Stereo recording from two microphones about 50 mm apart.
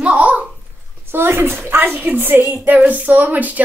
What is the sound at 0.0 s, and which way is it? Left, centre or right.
Babbling, right.